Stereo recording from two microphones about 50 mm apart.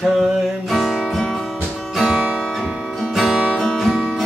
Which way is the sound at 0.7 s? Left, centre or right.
Centre.